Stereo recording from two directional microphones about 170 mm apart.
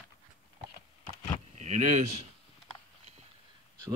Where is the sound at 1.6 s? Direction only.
45° right (ahead or behind).